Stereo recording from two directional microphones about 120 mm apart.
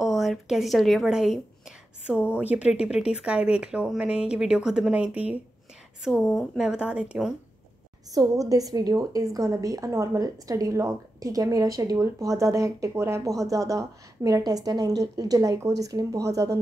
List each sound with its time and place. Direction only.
0.0 s a woman's voice: centre (ahead or behind)
8.1 s a woman's voice: 30° right (ahead or behind)